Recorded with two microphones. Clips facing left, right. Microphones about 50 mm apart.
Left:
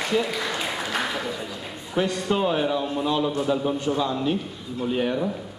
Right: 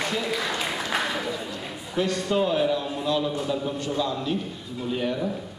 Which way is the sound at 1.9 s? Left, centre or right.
Centre.